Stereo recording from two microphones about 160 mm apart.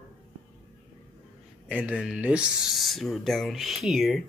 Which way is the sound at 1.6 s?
10° right (ahead or behind).